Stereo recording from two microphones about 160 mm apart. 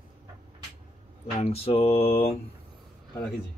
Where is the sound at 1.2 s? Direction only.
40° left (ahead or behind).